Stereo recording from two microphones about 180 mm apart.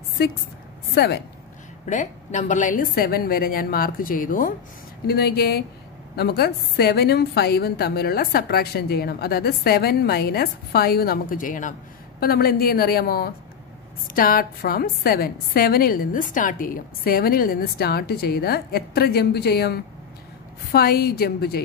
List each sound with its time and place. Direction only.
0.9 s a woman's voice: 65° left (ahead or behind)
1.9 s a woman's voice: 45° left (ahead or behind)
5.0 s a woman's voice: 60° left (ahead or behind)